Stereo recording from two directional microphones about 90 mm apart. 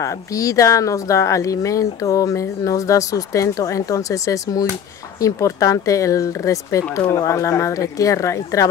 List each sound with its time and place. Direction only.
0.0 s speech: 35° left (ahead or behind)